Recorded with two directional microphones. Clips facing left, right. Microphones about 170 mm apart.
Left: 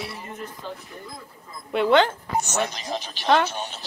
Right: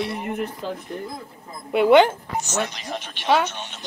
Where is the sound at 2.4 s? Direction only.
50° left (ahead or behind).